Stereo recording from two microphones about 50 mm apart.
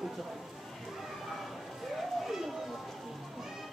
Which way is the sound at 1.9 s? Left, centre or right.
Centre.